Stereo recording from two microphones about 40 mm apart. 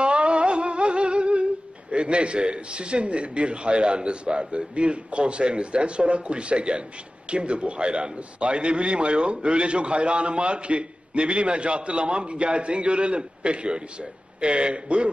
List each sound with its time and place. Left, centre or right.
0.0 s music: right
7.2 s a man's voice: right